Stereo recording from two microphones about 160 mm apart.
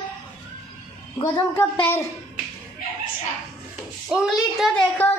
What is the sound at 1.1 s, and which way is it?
Speech, 25° left (ahead or behind).